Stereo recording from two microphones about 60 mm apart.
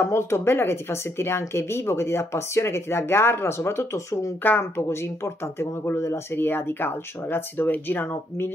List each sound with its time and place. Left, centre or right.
0.0 s speech: left
4.4 s speech: left